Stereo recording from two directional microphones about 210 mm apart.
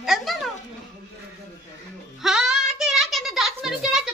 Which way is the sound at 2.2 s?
Centre (ahead or behind).